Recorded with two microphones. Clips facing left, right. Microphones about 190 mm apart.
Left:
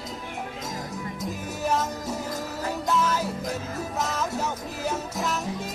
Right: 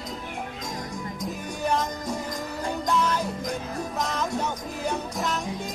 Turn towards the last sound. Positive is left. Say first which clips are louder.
# even
turn(degrees=0)  # may be behind; listen again after turning